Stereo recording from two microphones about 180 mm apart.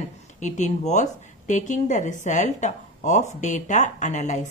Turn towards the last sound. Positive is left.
turn(degrees=40)  # may be behind; listen again after turning